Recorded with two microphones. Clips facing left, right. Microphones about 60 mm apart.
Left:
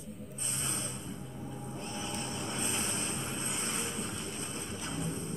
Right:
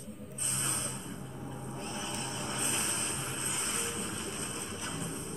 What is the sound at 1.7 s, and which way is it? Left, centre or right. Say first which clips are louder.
Vehicle: even; right.